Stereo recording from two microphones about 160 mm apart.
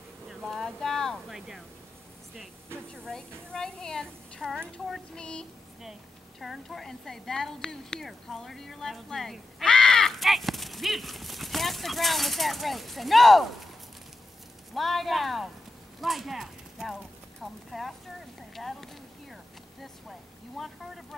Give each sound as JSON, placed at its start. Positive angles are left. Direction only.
{"t": 0.3, "sound": "speech", "side_deg": 0}
{"t": 2.9, "sound": "a woman's voice", "side_deg": 5}
{"t": 14.7, "sound": "a woman's voice", "side_deg": 0}